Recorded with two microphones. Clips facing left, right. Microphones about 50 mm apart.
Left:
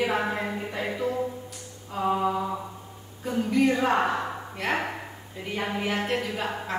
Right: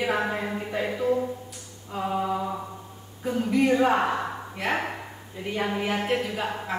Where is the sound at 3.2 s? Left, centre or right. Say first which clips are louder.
Even; centre.